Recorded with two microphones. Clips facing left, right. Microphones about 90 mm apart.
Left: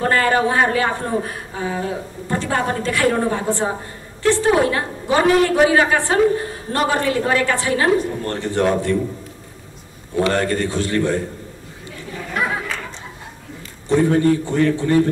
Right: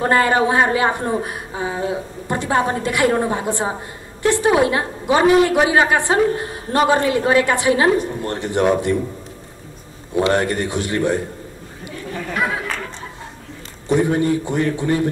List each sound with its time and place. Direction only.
0.0 s a woman's voice: 20° right (ahead or behind)
10.1 s a woman's voice: 15° right (ahead or behind)
13.8 s a woman's voice: 15° right (ahead or behind)